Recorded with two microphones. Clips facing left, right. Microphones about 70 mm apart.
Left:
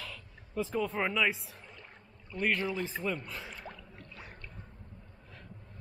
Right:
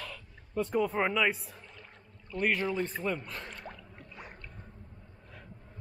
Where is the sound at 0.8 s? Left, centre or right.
Centre.